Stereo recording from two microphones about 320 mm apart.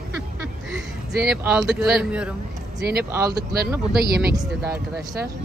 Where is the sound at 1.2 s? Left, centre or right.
Centre.